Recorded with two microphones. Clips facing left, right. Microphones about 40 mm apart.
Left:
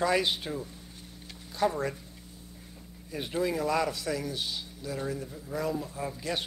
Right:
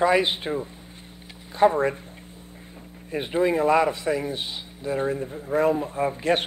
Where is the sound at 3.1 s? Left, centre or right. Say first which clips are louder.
Right 8 dB; right.